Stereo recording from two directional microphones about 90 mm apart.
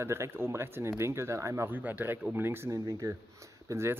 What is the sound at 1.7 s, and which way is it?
Speech, 20° right (ahead or behind).